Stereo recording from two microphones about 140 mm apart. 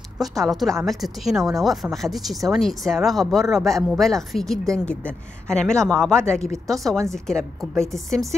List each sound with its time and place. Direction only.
0.4 s speech: centre (ahead or behind)